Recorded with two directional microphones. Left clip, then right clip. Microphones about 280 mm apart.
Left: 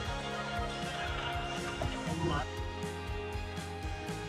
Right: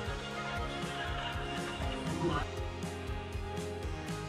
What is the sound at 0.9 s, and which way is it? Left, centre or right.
Music, left.